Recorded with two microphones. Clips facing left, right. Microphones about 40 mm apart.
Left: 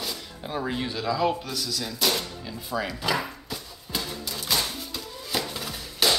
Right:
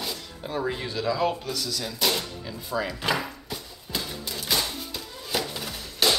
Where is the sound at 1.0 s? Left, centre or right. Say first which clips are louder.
Even; centre.